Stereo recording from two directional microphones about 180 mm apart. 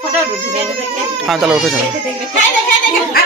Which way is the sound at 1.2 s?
Centre (ahead or behind).